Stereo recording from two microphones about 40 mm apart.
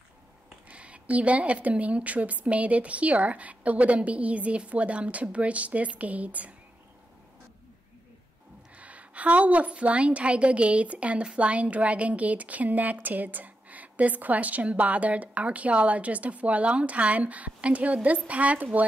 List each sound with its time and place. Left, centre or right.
0.7 s speech: right
8.7 s a woman's voice: right